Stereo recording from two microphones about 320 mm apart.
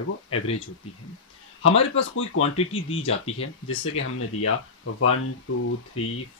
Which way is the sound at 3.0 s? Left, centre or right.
Left.